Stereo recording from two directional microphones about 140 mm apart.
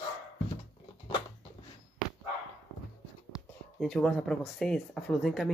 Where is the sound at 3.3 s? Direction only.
5° left (ahead or behind).